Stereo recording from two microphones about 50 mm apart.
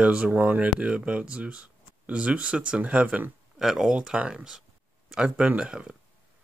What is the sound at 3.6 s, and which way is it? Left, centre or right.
Speech, centre.